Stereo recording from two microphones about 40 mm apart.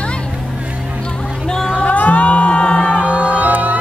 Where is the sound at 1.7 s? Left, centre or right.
Left.